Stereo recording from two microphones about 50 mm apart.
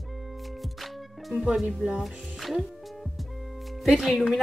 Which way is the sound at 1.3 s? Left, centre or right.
Centre.